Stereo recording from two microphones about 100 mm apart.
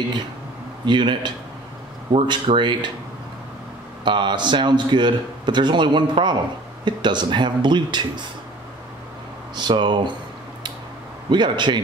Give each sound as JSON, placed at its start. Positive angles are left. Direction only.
{"t": 0.8, "sound": "a man's voice", "side_deg": -50}
{"t": 4.0, "sound": "a man's voice", "side_deg": -50}
{"t": 9.6, "sound": "a man's voice", "side_deg": -50}
{"t": 11.2, "sound": "a man's voice", "side_deg": -50}